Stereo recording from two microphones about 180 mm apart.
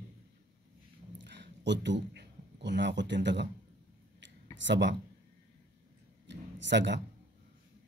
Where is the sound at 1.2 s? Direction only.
80° right.